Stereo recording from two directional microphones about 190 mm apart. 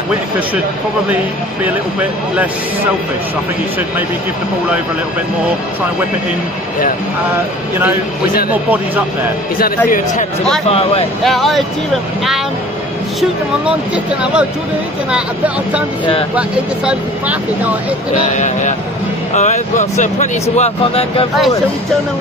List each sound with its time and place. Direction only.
9.8 s a man's voice: 45° left (ahead or behind)
10.7 s speech: 30° left (ahead or behind)
11.2 s speech: centre (ahead or behind)
15.0 s speech: 5° right (ahead or behind)
18.3 s speech: 40° left (ahead or behind)